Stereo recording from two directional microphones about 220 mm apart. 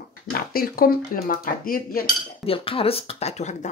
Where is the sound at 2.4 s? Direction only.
25° left (ahead or behind).